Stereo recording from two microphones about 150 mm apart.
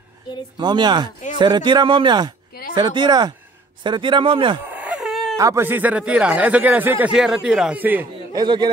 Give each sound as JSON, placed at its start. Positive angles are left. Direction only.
{"t": 0.6, "sound": "speech", "side_deg": -30}
{"t": 4.6, "sound": "a sound", "side_deg": -10}
{"t": 5.4, "sound": "speech", "side_deg": -15}
{"t": 8.4, "sound": "speech", "side_deg": -30}